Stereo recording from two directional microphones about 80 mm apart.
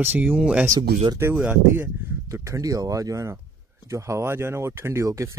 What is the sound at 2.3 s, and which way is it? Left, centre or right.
Speech, right.